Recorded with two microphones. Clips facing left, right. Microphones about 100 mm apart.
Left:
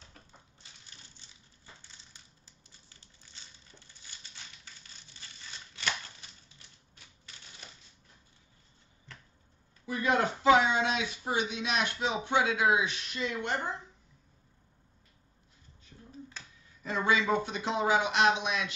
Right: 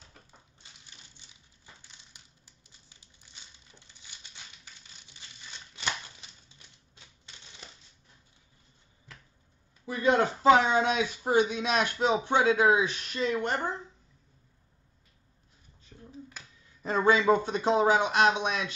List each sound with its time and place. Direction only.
1.8 s a sound: 15° right (ahead or behind)
9.8 s speech: 30° right (ahead or behind)
10.7 s speech: 45° right (ahead or behind)
15.9 s finger snapping: 35° right (ahead or behind)
16.8 s speech: 40° right (ahead or behind)